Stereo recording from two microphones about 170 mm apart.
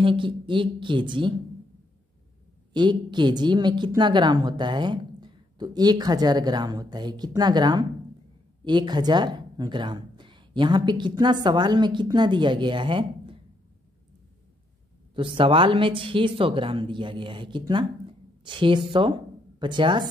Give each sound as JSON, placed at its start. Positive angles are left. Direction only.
{"t": 0.0, "sound": "a woman's voice", "side_deg": -30}
{"t": 2.7, "sound": "a woman's voice", "side_deg": -25}
{"t": 15.1, "sound": "a woman's voice", "side_deg": -30}